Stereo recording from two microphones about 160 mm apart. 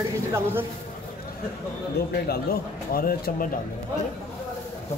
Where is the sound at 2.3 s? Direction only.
70° left (ahead or behind).